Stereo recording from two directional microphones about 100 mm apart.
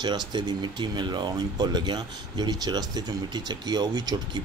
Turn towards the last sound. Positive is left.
turn(degrees=-40)  # may be behind; listen again after turning